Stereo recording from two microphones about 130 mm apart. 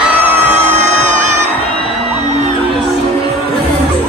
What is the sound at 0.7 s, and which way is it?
Music, 60° right (ahead or behind).